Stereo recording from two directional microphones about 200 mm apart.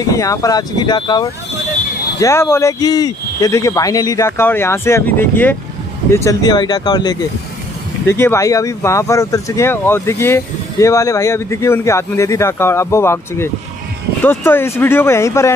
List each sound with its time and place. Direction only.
0.0 s speech: 15° left (ahead or behind)